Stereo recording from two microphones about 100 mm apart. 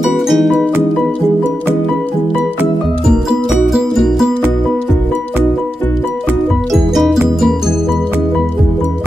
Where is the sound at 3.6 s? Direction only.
Centre (ahead or behind).